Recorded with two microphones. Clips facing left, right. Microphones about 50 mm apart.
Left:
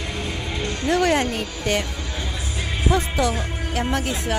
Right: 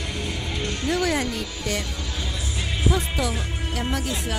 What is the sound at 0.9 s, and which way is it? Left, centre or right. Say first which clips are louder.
Speech: left 5 dB; left.